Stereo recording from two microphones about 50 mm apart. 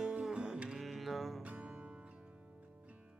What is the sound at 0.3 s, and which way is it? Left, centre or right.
Music, centre.